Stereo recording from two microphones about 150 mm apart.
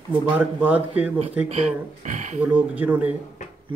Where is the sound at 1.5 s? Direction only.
45° right (ahead or behind).